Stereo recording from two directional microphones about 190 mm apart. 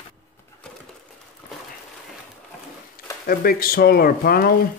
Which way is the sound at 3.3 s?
50° left (ahead or behind).